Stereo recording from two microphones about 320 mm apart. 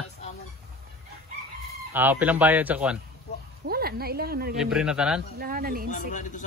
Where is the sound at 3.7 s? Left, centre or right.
Right.